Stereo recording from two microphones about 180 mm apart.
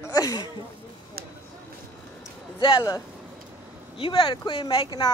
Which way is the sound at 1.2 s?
55° right (ahead or behind).